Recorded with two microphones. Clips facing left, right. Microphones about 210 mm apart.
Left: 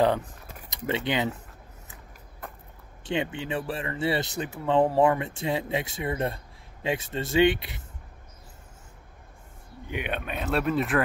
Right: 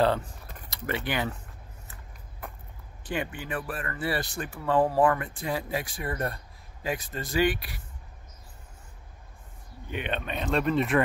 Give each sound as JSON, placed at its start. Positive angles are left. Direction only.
{"t": 0.7, "sound": "speech", "side_deg": 20}
{"t": 3.0, "sound": "speech", "side_deg": 25}
{"t": 9.8, "sound": "speech", "side_deg": 10}